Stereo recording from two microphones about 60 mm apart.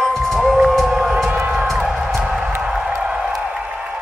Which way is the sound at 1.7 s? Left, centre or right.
Centre.